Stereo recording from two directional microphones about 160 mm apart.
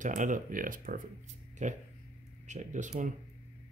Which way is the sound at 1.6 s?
45° right (ahead or behind).